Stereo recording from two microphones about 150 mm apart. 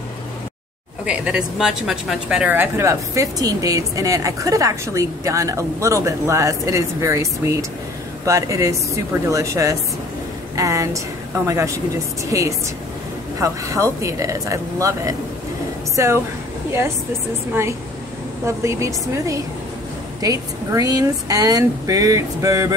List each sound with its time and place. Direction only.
1.0 s a woman's voice: 5° right (ahead or behind)
18.4 s a woman's voice: 20° right (ahead or behind)